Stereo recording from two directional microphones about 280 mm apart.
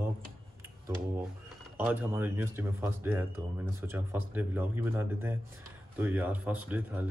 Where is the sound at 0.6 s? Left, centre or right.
Centre.